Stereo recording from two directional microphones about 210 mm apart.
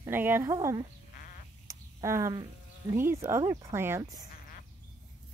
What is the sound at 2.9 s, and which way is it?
Speech, 15° right (ahead or behind).